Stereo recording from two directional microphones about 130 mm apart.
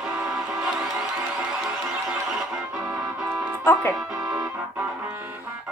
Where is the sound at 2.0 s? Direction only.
5° right (ahead or behind).